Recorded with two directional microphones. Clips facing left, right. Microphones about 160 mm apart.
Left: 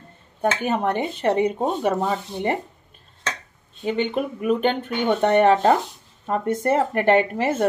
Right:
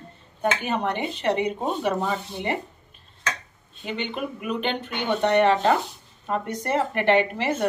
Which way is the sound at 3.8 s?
45° left (ahead or behind).